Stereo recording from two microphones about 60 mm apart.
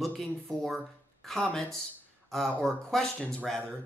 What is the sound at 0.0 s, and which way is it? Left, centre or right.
Speech, centre.